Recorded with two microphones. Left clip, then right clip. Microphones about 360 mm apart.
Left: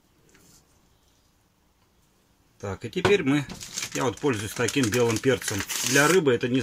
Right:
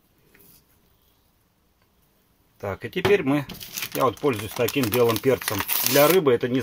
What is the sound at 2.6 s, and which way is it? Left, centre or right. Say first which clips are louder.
Speech: right 1 dB; centre.